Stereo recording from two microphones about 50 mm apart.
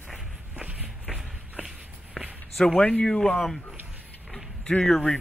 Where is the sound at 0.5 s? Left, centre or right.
Right.